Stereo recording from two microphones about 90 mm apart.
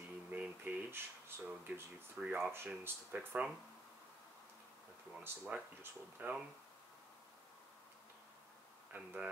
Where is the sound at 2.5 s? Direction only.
25° right (ahead or behind).